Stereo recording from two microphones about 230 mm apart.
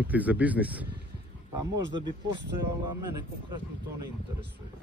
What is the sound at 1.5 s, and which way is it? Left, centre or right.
Speech, centre.